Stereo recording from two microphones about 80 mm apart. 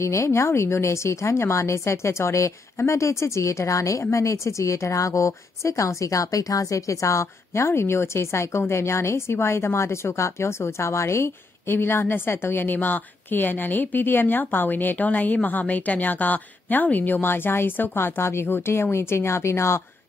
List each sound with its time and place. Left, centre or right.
0.0 s a woman's voice: left